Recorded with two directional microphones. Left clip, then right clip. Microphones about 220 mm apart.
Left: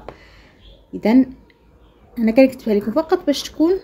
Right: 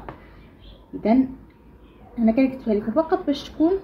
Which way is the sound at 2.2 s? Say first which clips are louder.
Left 7 dB; 65° left (ahead or behind).